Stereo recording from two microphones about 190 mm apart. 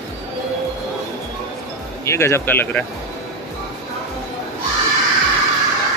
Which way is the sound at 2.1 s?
15° left (ahead or behind).